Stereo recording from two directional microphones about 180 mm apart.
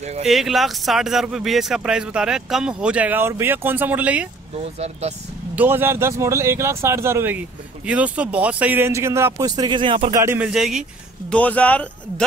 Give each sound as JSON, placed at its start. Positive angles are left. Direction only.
{"t": 0.2, "sound": "speech", "side_deg": 0}
{"t": 4.7, "sound": "speech", "side_deg": -35}
{"t": 5.6, "sound": "speech", "side_deg": -10}
{"t": 10.1, "sound": "speech", "side_deg": -15}